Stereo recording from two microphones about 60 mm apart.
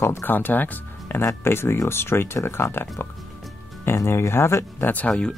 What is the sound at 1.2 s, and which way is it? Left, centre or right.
Speech, left.